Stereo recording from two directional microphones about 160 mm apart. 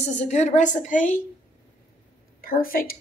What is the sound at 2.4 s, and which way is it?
Speech, 65° left (ahead or behind).